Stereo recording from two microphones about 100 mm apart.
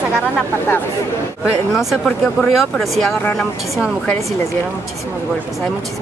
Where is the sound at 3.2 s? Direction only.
15° left (ahead or behind).